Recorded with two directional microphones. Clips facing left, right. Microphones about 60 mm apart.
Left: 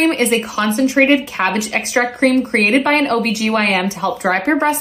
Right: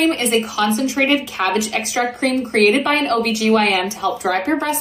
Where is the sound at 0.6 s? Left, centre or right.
Left.